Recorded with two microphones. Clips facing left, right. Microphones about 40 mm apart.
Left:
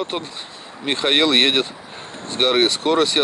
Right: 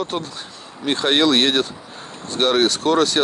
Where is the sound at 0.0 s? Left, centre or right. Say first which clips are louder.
Right 1 dB; left.